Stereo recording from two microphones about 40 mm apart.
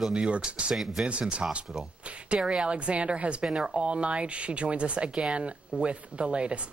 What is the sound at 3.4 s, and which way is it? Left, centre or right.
Speech, centre.